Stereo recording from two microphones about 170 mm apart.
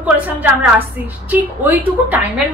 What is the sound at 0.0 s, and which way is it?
A woman's voice, 10° right (ahead or behind).